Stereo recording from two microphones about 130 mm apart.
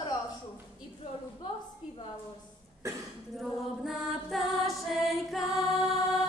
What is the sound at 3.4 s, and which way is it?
Music, centre (ahead or behind).